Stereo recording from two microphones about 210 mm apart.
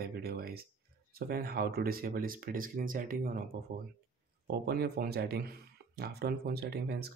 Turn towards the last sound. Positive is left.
turn(degrees=-50)  # may be behind; listen again after turning